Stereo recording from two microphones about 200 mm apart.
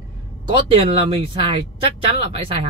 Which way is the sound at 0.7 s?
25° right (ahead or behind).